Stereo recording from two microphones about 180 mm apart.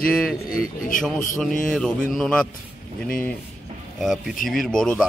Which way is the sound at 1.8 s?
5° left (ahead or behind).